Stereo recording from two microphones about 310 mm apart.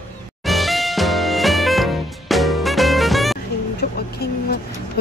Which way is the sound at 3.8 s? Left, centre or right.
Left.